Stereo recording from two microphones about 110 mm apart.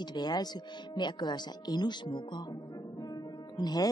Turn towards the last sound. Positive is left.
turn(degrees=40)  # may be behind; listen again after turning